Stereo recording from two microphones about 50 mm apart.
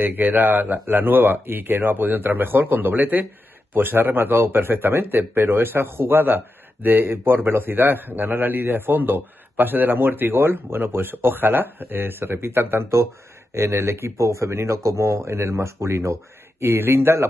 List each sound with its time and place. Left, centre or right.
0.0 s a man's voice: right
13.6 s speech: right
14.1 s speech: right